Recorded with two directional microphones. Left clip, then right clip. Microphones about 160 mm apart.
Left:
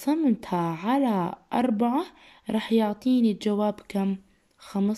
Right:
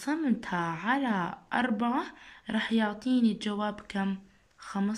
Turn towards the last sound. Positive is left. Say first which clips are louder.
# left 5 dB
turn(degrees=25)  # may be behind; listen again after turning